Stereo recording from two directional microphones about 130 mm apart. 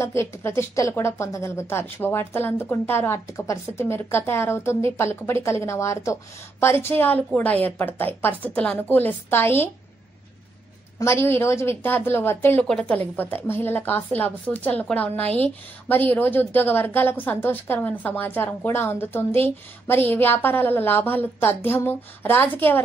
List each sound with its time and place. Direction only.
0.0 s a woman's voice: 20° left (ahead or behind)
11.0 s a woman's voice: 20° left (ahead or behind)